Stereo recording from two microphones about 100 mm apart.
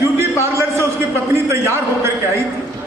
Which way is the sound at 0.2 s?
25° right (ahead or behind).